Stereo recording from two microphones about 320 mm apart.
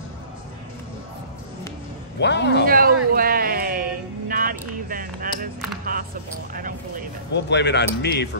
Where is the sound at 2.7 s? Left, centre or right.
Right.